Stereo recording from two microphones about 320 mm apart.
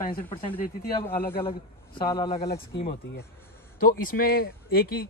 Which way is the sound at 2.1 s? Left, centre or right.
Centre.